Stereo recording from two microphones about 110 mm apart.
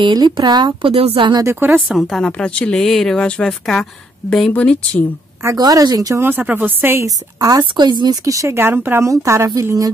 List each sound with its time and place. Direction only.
0.0 s a woman's voice: 40° right (ahead or behind)
0.9 s speech: 55° right (ahead or behind)
1.4 s speech: 20° right (ahead or behind)
1.9 s speech: centre (ahead or behind)
5.6 s a woman's voice: 35° right (ahead or behind)
6.2 s a woman's voice: 15° right (ahead or behind)
7.1 s a woman's voice: 35° right (ahead or behind)
8.3 s speech: 25° right (ahead or behind)